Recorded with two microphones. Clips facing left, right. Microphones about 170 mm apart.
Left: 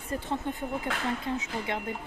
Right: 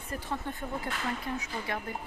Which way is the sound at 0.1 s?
20° left (ahead or behind).